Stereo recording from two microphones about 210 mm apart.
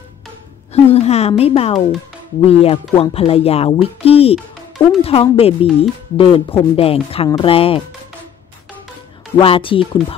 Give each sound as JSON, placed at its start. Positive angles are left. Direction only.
{"t": 0.8, "sound": "a woman's voice", "side_deg": 30}
{"t": 9.4, "sound": "a woman's voice", "side_deg": 25}